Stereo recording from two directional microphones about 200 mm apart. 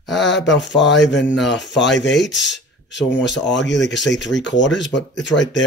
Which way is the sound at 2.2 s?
65° left (ahead or behind).